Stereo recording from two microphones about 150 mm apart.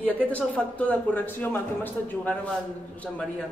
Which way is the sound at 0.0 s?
10° left (ahead or behind).